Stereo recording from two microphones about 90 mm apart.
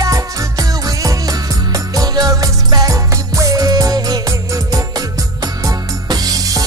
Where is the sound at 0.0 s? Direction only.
40° right (ahead or behind).